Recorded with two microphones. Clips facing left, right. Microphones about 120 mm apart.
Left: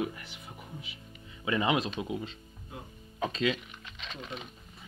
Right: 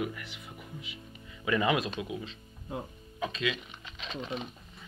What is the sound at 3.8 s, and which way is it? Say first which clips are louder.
Speech: right 7 dB; centre (ahead or behind).